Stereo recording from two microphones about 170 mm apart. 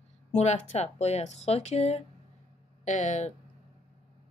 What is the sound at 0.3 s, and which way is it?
Speech, 40° left (ahead or behind).